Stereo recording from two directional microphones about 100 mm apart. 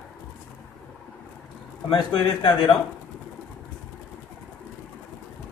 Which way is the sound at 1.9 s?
55° left (ahead or behind).